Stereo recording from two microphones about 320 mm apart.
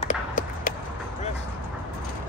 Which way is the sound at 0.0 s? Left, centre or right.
Left.